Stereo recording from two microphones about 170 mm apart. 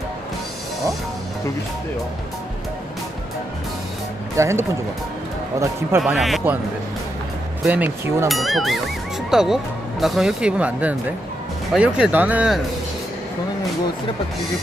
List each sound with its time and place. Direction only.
4.4 s speech: 15° right (ahead or behind)
6.1 s speech: centre (ahead or behind)
7.6 s speech: 10° right (ahead or behind)
8.3 s speech: centre (ahead or behind)